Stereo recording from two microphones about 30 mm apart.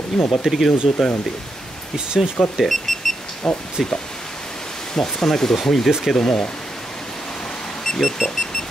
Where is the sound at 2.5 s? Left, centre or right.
Centre.